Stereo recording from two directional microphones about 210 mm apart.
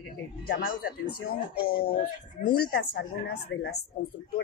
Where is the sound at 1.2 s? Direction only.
45° left (ahead or behind).